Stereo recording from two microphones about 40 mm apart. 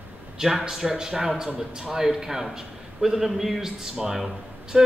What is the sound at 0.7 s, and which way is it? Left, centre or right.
A man's voice, centre.